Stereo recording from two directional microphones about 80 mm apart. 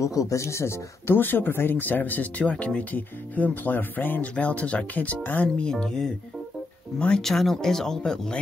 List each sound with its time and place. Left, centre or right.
0.0 s speech: left; by 8.4 s centre